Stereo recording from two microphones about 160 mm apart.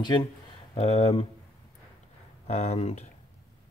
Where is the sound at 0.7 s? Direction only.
40° left (ahead or behind).